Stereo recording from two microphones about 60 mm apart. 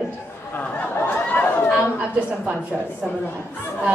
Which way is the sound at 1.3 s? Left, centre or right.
Left.